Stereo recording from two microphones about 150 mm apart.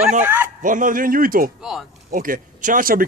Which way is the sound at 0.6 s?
60° right (ahead or behind).